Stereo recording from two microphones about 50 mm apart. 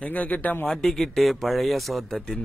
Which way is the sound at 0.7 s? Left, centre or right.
Centre.